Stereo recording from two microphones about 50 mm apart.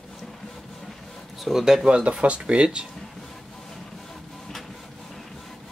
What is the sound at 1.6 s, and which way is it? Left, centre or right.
Speech, centre.